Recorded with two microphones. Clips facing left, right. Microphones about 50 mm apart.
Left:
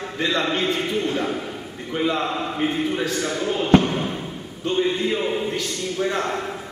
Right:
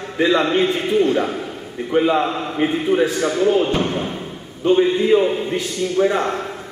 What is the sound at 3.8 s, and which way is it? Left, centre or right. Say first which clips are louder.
Basketball bounce: right 2 dB; centre.